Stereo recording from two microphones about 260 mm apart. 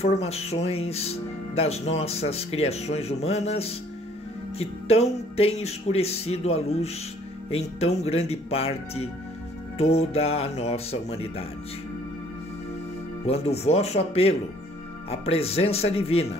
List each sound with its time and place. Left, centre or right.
0.0 s speech: left
13.2 s speech: left